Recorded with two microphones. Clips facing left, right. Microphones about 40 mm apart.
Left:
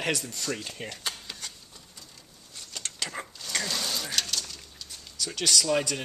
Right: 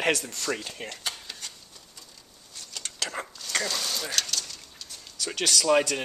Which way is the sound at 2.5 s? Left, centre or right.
Centre.